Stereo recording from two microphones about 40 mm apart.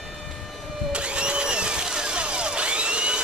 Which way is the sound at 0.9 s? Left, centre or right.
Right.